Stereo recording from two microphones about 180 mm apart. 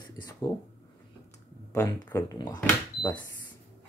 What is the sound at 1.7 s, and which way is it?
Speech, 15° left (ahead or behind).